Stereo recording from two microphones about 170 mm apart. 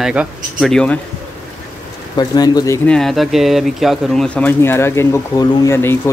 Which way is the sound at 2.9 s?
Centre (ahead or behind).